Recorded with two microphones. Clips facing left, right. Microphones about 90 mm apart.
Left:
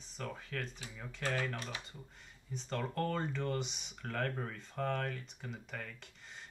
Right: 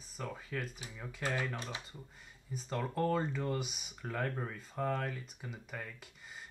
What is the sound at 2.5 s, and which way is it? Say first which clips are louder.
Speech: right 1 dB; 5° right (ahead or behind).